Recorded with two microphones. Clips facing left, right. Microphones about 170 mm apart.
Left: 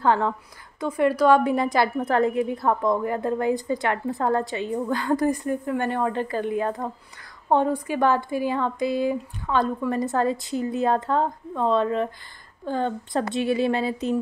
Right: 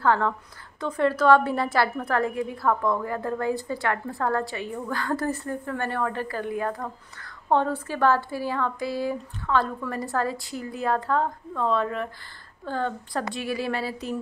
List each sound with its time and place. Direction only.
0.0 s a woman's voice: 20° left (ahead or behind)